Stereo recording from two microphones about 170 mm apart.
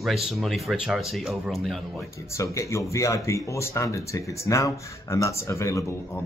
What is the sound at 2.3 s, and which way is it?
Speech, 15° left (ahead or behind).